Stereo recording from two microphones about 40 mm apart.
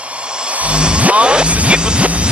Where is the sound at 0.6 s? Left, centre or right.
Right.